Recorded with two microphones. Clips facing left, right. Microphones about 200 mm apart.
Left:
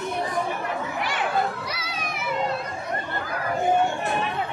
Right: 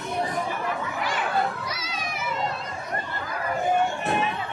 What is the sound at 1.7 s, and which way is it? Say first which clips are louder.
Children playing: left 1 dB; 60° left (ahead or behind).